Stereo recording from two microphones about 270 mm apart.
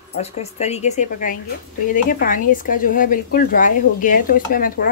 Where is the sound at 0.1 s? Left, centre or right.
Left.